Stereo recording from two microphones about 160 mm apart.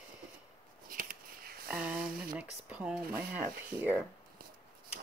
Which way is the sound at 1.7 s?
5° right (ahead or behind).